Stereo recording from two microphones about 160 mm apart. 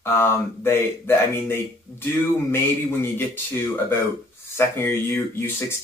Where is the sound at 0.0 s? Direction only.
15° left (ahead or behind).